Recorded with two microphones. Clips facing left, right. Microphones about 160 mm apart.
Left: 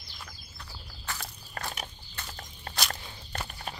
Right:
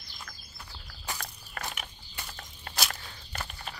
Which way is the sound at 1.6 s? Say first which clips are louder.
Left 1 dB; 30° left (ahead or behind).